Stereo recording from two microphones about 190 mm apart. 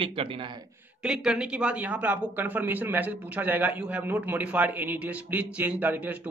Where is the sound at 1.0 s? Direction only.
5° right (ahead or behind).